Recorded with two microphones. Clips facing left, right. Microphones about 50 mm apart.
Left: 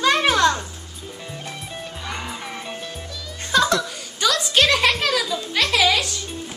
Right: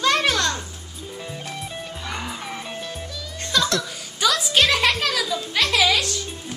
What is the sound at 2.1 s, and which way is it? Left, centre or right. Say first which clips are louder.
Music: even; centre.